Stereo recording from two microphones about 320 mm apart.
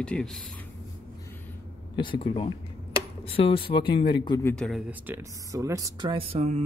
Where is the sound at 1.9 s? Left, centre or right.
Centre.